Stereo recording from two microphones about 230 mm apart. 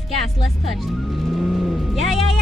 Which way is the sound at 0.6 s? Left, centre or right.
Centre.